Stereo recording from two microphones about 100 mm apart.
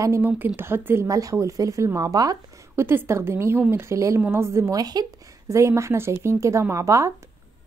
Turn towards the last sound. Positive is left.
turn(degrees=-30)  # may be behind; listen again after turning